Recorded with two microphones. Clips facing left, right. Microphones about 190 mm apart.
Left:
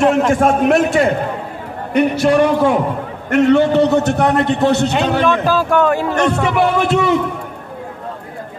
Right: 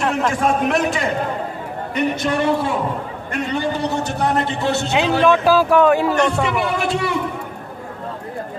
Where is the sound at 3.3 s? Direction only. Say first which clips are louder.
Left 11 dB; 75° left (ahead or behind).